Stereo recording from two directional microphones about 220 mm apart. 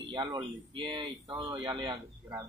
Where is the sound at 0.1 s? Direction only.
20° right (ahead or behind).